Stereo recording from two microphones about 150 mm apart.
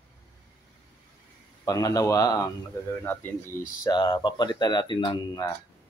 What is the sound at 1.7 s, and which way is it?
Speech, 25° left (ahead or behind).